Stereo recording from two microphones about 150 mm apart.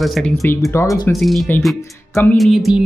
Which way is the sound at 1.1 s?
Centre (ahead or behind).